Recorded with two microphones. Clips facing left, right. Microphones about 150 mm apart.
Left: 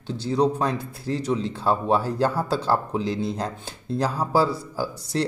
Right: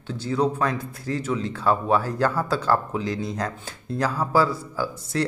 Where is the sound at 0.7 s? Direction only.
30° left (ahead or behind).